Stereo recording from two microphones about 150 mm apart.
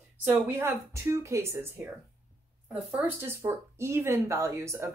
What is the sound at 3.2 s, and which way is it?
Speech, 15° right (ahead or behind).